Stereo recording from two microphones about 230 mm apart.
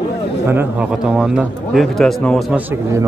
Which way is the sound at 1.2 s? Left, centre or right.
Centre.